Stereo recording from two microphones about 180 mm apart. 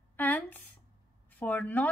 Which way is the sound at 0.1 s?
10° left (ahead or behind).